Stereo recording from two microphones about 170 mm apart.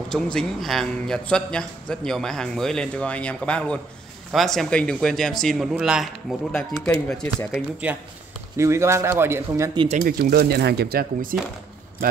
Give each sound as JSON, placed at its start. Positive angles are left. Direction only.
{"t": 0.1, "sound": "a man's voice", "side_deg": 5}
{"t": 7.5, "sound": "speech", "side_deg": -10}
{"t": 9.9, "sound": "speech", "side_deg": -60}